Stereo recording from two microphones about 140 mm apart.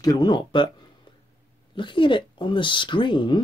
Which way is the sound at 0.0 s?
30° left (ahead or behind).